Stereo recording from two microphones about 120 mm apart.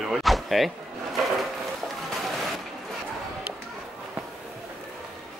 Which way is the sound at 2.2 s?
Centre (ahead or behind).